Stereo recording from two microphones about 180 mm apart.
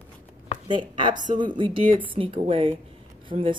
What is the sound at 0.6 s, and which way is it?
A woman's voice, 25° right (ahead or behind).